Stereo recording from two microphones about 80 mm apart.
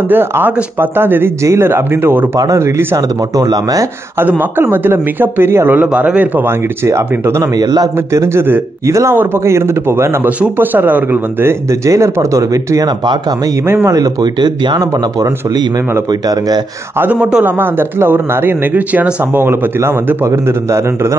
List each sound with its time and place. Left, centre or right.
0.1 s speech: right
3.3 s speech: right
4.2 s speech: right
7.5 s speech: right
8.1 s speech: right
11.8 s speech: right
13.8 s speech: right
17.0 s speech: right